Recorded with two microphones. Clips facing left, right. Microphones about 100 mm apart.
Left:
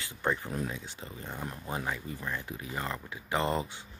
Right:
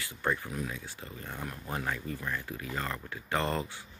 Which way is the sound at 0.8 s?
20° left (ahead or behind).